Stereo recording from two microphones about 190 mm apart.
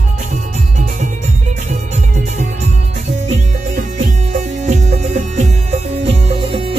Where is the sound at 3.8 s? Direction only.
40° right (ahead or behind).